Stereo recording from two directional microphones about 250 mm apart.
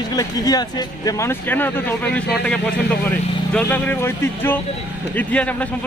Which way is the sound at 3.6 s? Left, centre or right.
Centre.